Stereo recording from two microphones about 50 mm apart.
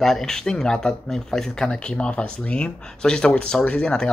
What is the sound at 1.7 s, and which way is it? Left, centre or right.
Speech, left.